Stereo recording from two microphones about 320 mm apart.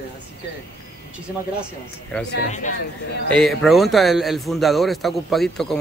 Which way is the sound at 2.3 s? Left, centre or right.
Left.